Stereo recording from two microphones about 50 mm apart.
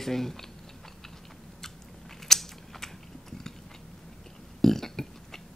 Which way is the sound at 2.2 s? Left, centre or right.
Centre.